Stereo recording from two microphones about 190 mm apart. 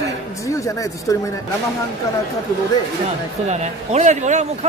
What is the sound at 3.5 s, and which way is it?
Speech, 35° right (ahead or behind).